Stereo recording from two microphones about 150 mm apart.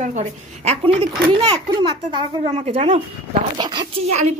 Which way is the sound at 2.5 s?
45° right (ahead or behind).